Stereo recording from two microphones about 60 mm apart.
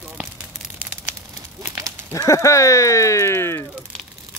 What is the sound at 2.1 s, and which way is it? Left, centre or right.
Speech, left.